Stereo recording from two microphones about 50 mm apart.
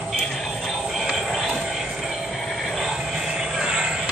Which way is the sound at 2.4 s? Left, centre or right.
Centre.